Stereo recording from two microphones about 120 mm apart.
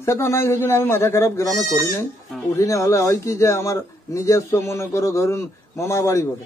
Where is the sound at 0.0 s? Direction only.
25° left (ahead or behind).